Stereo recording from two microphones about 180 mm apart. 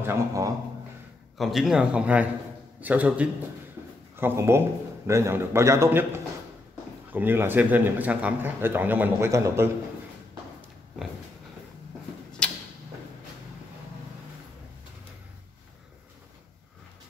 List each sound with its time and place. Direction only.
0.0 s a man's voice: 15° right (ahead or behind)
1.4 s a man's voice: centre (ahead or behind)
12.4 s tick-tock: 5° left (ahead or behind)